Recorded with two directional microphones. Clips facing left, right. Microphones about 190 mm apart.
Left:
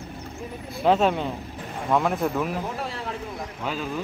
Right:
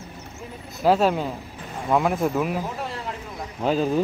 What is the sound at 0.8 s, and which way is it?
Speech, 5° right (ahead or behind).